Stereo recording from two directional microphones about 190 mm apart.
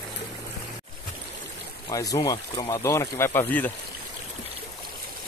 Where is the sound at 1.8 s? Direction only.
20° left (ahead or behind).